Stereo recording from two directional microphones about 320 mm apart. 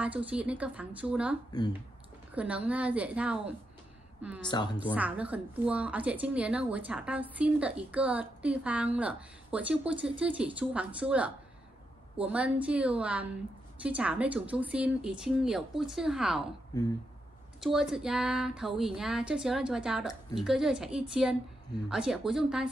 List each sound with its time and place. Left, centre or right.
0.0 s speech: centre
1.5 s speech: centre
2.3 s a woman's voice: centre
17.7 s speech: centre